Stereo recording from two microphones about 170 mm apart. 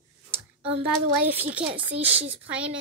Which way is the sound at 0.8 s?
10° right (ahead or behind).